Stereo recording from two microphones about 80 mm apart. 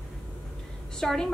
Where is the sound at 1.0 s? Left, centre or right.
Centre.